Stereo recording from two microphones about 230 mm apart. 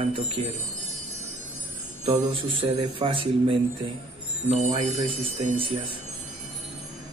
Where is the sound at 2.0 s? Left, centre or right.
Right.